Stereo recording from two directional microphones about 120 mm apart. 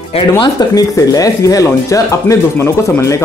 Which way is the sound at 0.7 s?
30° left (ahead or behind).